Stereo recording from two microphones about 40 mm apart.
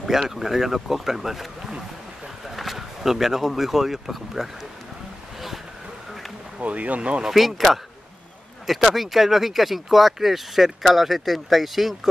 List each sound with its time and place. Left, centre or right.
0.0 s speech: centre
2.5 s speech: centre
6.6 s speech: right
7.2 s speech: centre
8.6 s speech: centre